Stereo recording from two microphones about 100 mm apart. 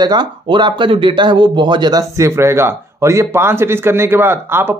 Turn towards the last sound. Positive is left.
turn(degrees=-25)  # may be behind; listen again after turning